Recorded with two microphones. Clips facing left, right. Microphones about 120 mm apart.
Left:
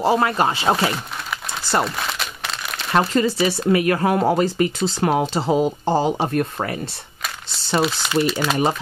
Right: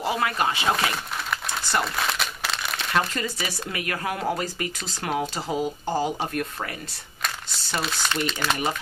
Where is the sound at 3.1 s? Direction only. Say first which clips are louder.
Left 11 dB; 30° left (ahead or behind).